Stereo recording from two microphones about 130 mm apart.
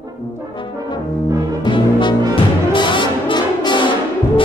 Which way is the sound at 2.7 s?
35° left (ahead or behind).